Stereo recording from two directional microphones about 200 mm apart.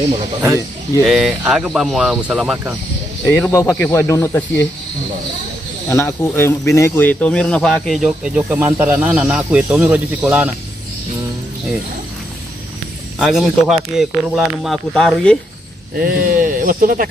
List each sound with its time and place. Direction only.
1.0 s speech: centre (ahead or behind)
3.3 s speech: 10° left (ahead or behind)
5.9 s speech: 10° left (ahead or behind); by 10.5 s 10° right (ahead or behind)
13.2 s speech: centre (ahead or behind)
16.0 s speech: 45° right (ahead or behind)